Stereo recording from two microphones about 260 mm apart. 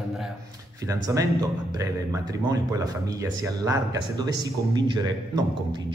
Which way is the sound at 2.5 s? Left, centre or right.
Centre.